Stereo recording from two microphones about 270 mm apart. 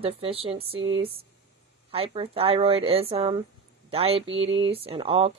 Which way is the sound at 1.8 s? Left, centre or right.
Centre.